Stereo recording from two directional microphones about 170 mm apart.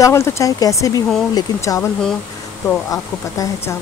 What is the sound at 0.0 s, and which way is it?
Speech, 15° left (ahead or behind).